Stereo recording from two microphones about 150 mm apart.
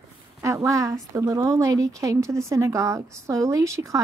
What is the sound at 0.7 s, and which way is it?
Speech, 20° right (ahead or behind).